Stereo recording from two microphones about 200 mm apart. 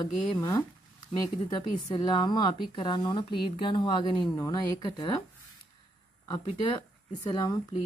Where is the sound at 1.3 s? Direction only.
25° left (ahead or behind).